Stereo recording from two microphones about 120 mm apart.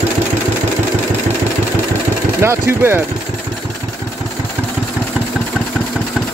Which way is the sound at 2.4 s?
20° right (ahead or behind).